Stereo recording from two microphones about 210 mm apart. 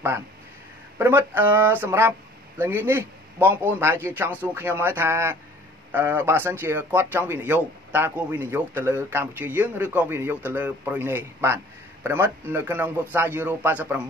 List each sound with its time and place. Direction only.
0.9 s speech: 10° right (ahead or behind)